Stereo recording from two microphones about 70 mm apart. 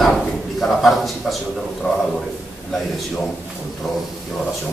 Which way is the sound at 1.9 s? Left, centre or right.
Centre.